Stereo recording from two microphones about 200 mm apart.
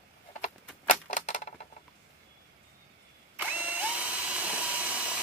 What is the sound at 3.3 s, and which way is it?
Drill, 10° right (ahead or behind).